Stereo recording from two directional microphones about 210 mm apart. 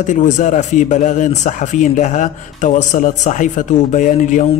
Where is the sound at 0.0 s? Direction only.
35° left (ahead or behind).